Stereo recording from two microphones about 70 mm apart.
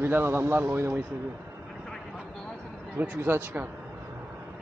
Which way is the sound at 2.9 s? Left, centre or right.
Right.